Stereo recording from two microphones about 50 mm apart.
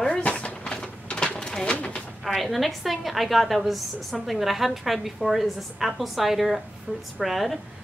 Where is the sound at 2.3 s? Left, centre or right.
Centre.